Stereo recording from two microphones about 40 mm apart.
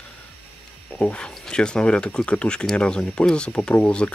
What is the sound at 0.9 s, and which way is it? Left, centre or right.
Speech, left.